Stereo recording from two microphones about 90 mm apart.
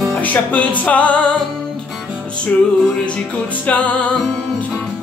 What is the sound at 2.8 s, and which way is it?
Music, 10° left (ahead or behind).